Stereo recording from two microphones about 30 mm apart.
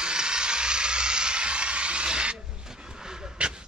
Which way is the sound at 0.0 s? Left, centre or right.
Right.